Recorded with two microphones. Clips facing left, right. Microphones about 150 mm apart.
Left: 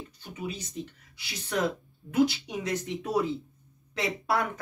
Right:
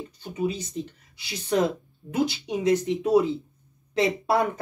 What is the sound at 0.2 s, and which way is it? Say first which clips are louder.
Speech: right 9 dB; 25° right (ahead or behind).